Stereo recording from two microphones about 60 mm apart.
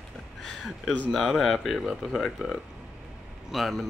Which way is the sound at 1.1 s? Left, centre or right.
Centre.